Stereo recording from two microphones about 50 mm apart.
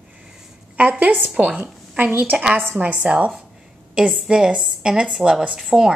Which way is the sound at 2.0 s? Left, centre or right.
Right.